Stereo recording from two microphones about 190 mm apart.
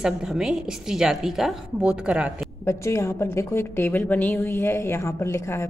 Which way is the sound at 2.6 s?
15° left (ahead or behind).